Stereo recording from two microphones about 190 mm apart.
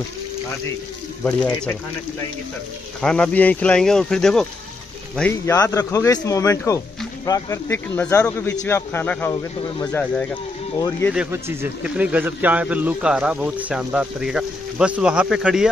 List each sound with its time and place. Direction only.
1.2 s speech: 5° left (ahead or behind)
3.0 s a man's voice: 5° left (ahead or behind)
5.4 s speech: 15° left (ahead or behind)
11.1 s a man's voice: 10° right (ahead or behind)